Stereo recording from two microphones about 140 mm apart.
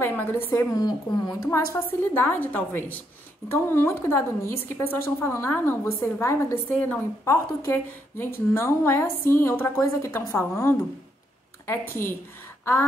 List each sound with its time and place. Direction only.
0.0 s a woman's voice: 15° left (ahead or behind)
0.7 s a woman's voice: 30° left (ahead or behind)
1.5 s a woman's voice: 15° left (ahead or behind)